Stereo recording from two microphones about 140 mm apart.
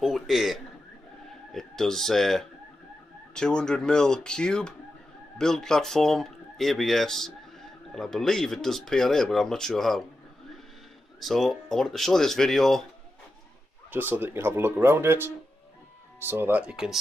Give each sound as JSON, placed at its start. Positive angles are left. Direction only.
{"t": 0.0, "sound": "speech", "side_deg": 0}
{"t": 11.1, "sound": "speech", "side_deg": 0}
{"t": 13.8, "sound": "speech", "side_deg": -15}